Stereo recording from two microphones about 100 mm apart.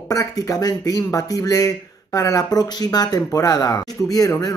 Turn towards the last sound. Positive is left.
turn(degrees=40)  # may be behind; listen again after turning